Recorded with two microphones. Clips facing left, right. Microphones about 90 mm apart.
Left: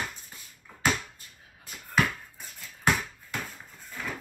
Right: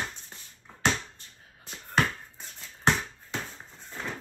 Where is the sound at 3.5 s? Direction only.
30° right (ahead or behind).